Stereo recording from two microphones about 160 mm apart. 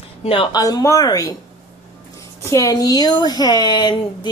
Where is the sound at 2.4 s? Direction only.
20° left (ahead or behind).